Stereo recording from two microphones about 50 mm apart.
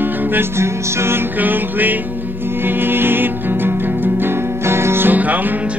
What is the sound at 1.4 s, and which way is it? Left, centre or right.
Music, right.